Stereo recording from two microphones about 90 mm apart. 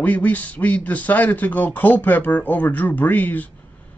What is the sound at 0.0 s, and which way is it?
A man's voice, 20° left (ahead or behind).